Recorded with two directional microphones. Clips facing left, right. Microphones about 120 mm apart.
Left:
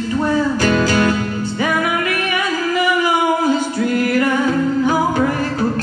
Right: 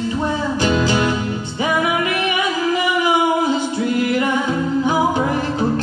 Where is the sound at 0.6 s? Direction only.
20° right (ahead or behind).